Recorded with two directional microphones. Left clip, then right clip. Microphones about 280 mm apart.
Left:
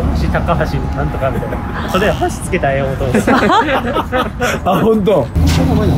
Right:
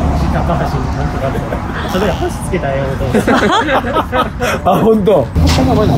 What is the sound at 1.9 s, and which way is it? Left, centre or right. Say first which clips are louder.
Speech: left 2 dB; centre.